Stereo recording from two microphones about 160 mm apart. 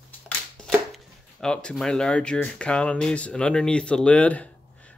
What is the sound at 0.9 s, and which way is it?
Speech, 5° left (ahead or behind).